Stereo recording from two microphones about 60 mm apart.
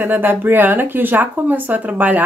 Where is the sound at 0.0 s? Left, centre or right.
Right.